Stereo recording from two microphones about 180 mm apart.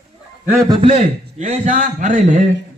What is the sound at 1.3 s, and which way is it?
Speech, 40° right (ahead or behind).